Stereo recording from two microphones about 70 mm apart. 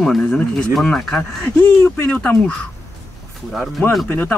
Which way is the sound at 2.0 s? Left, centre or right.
Left.